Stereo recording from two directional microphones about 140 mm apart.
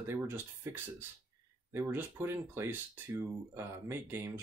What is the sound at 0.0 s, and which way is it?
Speech, 15° right (ahead or behind).